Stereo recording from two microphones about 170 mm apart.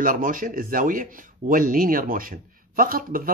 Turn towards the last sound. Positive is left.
turn(degrees=-55)  # may be behind; listen again after turning